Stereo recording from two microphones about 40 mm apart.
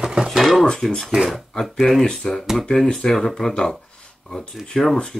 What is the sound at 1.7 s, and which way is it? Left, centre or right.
Speech, centre.